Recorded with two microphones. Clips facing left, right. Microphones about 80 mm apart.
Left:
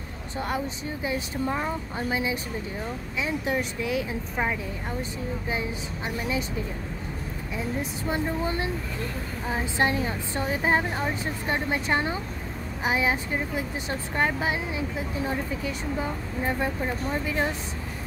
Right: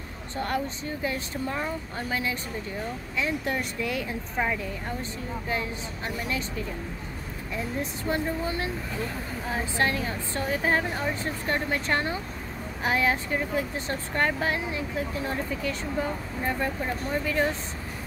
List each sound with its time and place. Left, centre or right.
0.4 s speech: centre
7.5 s speech: centre
9.5 s a woman's voice: left